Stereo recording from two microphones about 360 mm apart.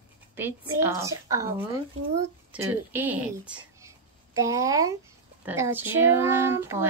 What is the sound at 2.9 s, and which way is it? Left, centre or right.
A child's voice, centre.